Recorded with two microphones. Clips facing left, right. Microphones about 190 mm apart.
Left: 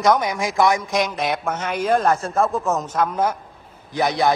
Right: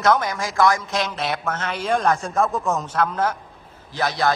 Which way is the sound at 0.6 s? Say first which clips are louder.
Even; 20° left (ahead or behind).